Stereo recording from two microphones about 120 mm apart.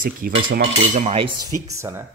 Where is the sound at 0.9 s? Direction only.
80° right.